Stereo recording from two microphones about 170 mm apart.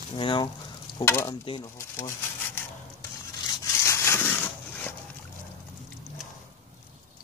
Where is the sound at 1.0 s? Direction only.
15° left (ahead or behind).